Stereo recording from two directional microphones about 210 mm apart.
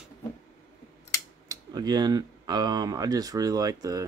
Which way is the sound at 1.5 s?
20° right (ahead or behind).